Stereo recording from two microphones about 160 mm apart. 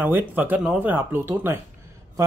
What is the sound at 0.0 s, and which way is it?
Speech, 10° right (ahead or behind).